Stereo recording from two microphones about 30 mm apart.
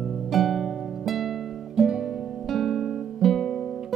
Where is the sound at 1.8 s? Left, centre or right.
Centre.